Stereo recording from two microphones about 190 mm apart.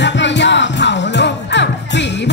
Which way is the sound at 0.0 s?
70° left (ahead or behind).